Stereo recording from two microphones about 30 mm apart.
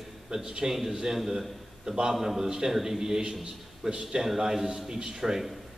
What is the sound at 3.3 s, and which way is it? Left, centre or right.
A man's voice, right.